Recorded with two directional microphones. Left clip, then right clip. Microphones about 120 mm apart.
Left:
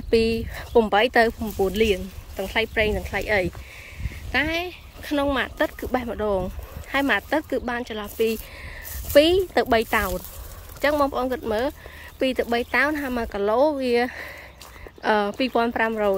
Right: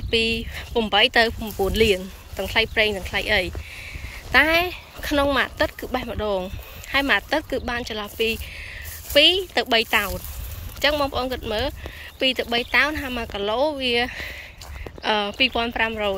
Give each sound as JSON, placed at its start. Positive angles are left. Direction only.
{"t": 0.1, "sound": "speech", "side_deg": 45}
{"t": 1.6, "sound": "speech", "side_deg": 15}
{"t": 4.3, "sound": "speech", "side_deg": 10}
{"t": 8.2, "sound": "speech", "side_deg": 40}